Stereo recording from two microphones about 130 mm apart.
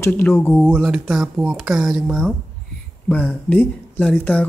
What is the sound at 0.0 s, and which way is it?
Speech, 20° left (ahead or behind).